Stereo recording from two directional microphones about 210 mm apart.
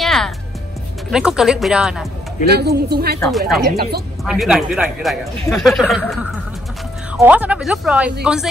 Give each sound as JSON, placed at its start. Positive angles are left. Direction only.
{"t": 0.0, "sound": "music", "side_deg": 0}
{"t": 1.1, "sound": "speech", "side_deg": 0}
{"t": 2.5, "sound": "a woman's voice", "side_deg": -50}
{"t": 3.3, "sound": "speech", "side_deg": 0}
{"t": 3.6, "sound": "a woman's voice", "side_deg": -50}
{"t": 4.2, "sound": "speech", "side_deg": 0}
{"t": 7.2, "sound": "speech", "side_deg": -5}